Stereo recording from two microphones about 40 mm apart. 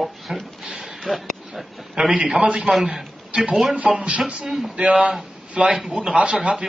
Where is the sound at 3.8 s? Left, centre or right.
Centre.